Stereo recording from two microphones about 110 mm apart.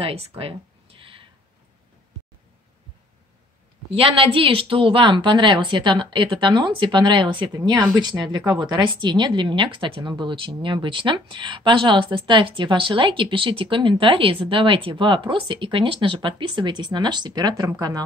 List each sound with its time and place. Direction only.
0.0 s speech: 60° right (ahead or behind)
3.9 s speech: 55° right (ahead or behind); by 18.0 s 35° right (ahead or behind)